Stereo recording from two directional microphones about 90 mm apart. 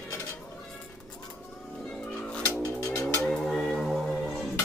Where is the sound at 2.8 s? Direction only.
35° left (ahead or behind).